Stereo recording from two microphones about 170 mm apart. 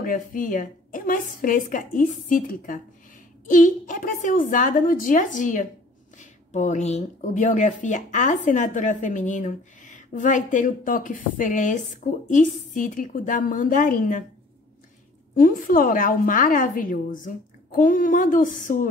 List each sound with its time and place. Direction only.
0.0 s a woman's voice: 55° left (ahead or behind)
15.3 s a woman's voice: 55° left (ahead or behind)